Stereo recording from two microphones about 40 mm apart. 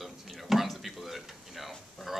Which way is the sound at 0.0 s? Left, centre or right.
Centre.